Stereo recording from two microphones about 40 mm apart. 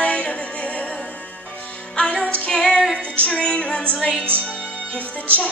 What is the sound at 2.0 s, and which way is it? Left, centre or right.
Music, left.